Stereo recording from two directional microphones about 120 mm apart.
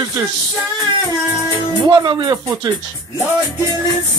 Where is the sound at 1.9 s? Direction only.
35° right (ahead or behind).